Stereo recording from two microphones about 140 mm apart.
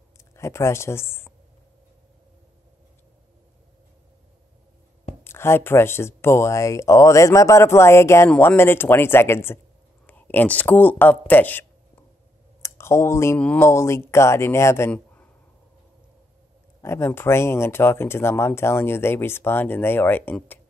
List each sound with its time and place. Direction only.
0.2 s speech: 20° left (ahead or behind)
5.2 s speech: 15° left (ahead or behind)
13.4 s speech: 10° left (ahead or behind)
13.7 s speech: 20° left (ahead or behind)
16.8 s speech: 20° left (ahead or behind)